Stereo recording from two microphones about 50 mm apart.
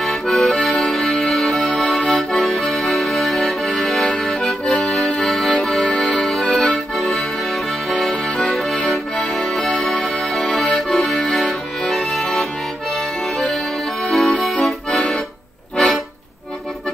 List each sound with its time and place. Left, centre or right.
0.0 s accordion: centre
5.6 s music: centre
6.2 s accordion: centre
14.0 s accordion: centre
14.9 s accordion: centre